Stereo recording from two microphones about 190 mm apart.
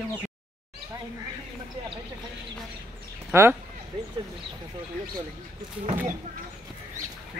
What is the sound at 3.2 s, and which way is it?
Speech, 15° right (ahead or behind).